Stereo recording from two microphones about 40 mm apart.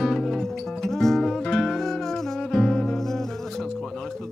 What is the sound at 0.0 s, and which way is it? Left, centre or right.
Music, centre.